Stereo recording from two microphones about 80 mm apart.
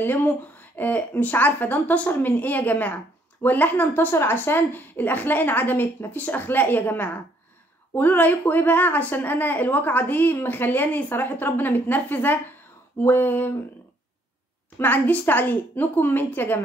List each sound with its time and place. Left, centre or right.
0.0 s a woman's voice: left
14.8 s a woman's voice: left